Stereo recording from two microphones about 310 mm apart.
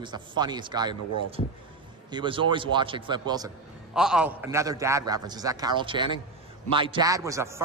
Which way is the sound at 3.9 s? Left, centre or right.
Centre.